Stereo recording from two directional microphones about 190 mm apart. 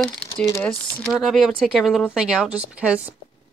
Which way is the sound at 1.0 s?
Centre (ahead or behind).